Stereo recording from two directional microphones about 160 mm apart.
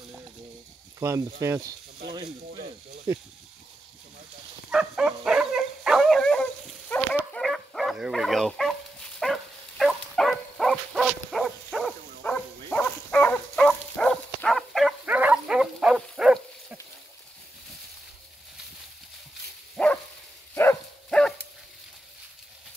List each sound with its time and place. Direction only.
0.9 s speech: 20° right (ahead or behind)
3.1 s speech: 20° right (ahead or behind)
4.6 s dog: 5° right (ahead or behind)
19.8 s dog: centre (ahead or behind)
20.5 s dog: 15° left (ahead or behind)